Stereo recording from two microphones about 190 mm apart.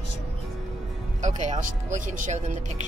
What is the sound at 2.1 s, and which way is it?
Speech, 40° right (ahead or behind).